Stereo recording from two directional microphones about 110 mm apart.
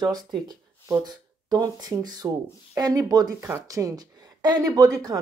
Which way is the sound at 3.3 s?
25° right (ahead or behind).